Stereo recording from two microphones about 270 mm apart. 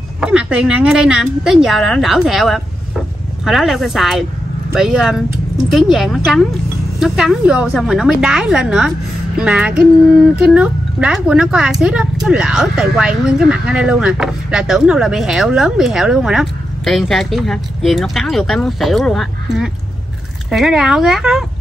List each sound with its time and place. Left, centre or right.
0.2 s speech: centre